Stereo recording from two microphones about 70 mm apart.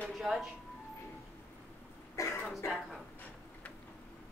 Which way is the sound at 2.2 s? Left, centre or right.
Left.